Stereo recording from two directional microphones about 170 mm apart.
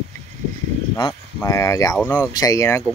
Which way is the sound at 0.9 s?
20° left (ahead or behind).